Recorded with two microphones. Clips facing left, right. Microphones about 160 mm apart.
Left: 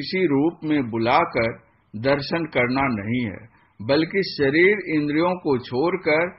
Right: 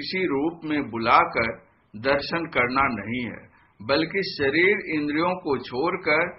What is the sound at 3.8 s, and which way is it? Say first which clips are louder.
Speech: left 4 dB; 35° left (ahead or behind).